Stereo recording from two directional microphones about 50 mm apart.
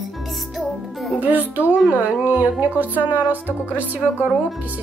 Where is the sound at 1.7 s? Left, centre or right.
Right.